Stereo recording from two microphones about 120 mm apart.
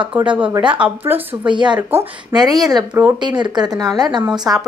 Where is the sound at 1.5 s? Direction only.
40° right (ahead or behind).